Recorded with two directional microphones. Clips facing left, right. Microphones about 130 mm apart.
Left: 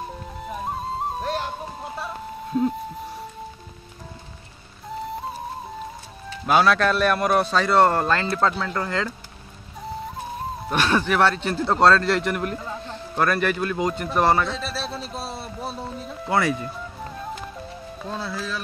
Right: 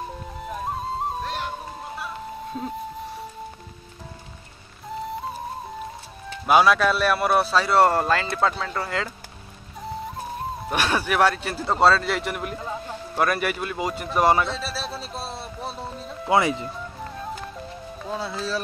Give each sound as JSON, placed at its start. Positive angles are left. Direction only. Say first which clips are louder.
{"t": 0.4, "sound": "music", "louder": "even", "side_deg": 0}
{"t": 2.5, "sound": "speech", "louder": "left 11 dB", "side_deg": 5}
{"t": 6.4, "sound": "a man's voice", "louder": "right 1 dB", "side_deg": -5}
{"t": 10.7, "sound": "a man's voice", "louder": "left 3 dB", "side_deg": -10}
{"t": 16.3, "sound": "speech", "louder": "right 2 dB", "side_deg": -20}
{"t": 16.6, "sound": "music", "louder": "even", "side_deg": 0}
{"t": 18.0, "sound": "music", "louder": "right 1 dB", "side_deg": -10}
{"t": 18.3, "sound": "speech", "louder": "right 2 dB", "side_deg": -25}